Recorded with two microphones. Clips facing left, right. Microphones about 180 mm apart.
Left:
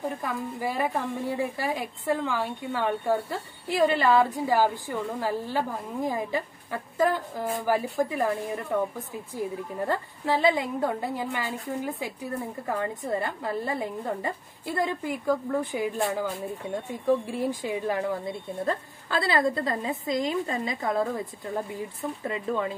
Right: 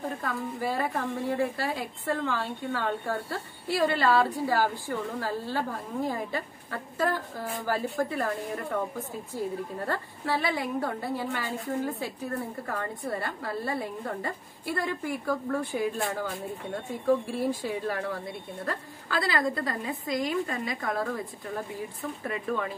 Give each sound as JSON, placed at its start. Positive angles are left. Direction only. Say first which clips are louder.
{"t": 0.2, "sound": "a woman's voice", "louder": "left 1 dB", "side_deg": 15}
{"t": 9.8, "sound": "a woman's voice", "louder": "left 5 dB", "side_deg": 15}
{"t": 17.3, "sound": "a woman's voice", "louder": "left 1 dB", "side_deg": 15}
{"t": 22.2, "sound": "a woman's voice", "louder": "left 2 dB", "side_deg": 20}